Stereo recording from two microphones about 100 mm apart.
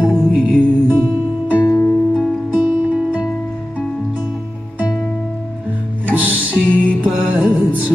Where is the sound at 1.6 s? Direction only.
20° left (ahead or behind).